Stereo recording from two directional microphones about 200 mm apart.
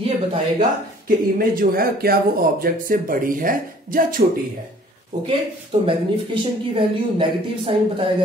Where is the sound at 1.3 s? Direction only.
45° right (ahead or behind).